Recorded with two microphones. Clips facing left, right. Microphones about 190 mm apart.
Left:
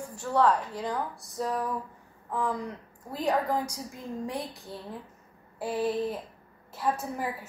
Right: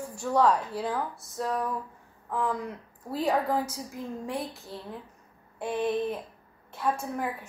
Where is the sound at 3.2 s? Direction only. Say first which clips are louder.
Right 1 dB; 10° right (ahead or behind).